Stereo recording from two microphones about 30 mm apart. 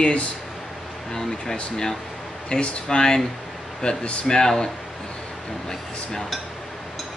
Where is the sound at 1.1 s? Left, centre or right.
Centre.